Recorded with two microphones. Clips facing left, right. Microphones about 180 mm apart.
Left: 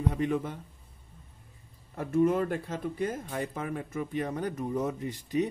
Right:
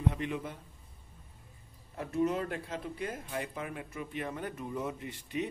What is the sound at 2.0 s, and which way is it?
Speech, 50° left (ahead or behind).